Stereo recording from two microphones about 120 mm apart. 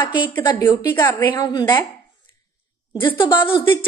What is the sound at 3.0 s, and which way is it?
Speech, 45° left (ahead or behind).